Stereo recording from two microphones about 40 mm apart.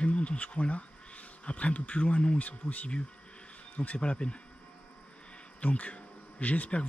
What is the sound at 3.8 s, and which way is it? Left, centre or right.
Speech, left.